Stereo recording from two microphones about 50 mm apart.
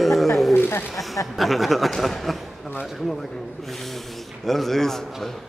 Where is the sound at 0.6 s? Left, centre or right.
Left.